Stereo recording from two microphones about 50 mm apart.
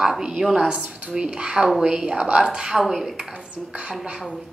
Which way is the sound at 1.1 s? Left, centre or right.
Centre.